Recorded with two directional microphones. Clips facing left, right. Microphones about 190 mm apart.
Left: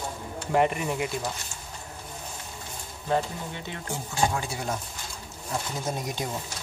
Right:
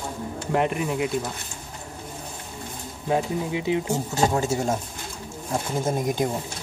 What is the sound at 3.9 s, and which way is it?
Speech, 40° right (ahead or behind).